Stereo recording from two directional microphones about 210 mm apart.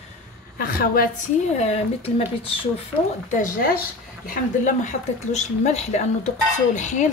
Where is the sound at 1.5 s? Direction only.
30° left (ahead or behind).